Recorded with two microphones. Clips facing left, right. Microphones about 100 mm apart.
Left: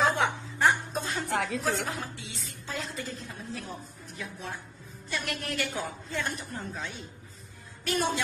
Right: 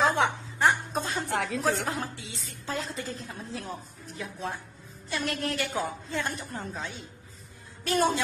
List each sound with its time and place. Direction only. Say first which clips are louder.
0.1 s music: right 2 dB; 30° right (ahead or behind)
1.3 s speech: right 1 dB; centre (ahead or behind)
1.9 s a woman's voice: right 3 dB; 30° right (ahead or behind)